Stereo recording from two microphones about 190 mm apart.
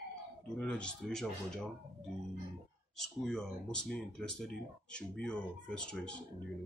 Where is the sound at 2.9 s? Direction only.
Centre (ahead or behind).